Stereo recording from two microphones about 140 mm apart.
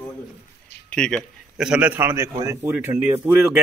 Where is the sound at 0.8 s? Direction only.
5° left (ahead or behind).